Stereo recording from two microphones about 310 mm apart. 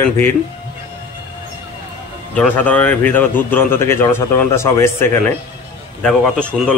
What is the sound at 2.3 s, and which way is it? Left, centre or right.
A man's voice, centre.